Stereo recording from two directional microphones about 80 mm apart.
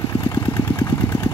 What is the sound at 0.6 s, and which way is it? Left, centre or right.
Vehicle, left.